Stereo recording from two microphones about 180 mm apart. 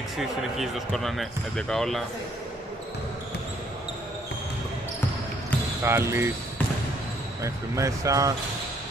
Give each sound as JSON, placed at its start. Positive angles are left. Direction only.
{"t": 0.2, "sound": "speech", "side_deg": 0}
{"t": 5.9, "sound": "speech", "side_deg": -15}
{"t": 7.4, "sound": "speech", "side_deg": -15}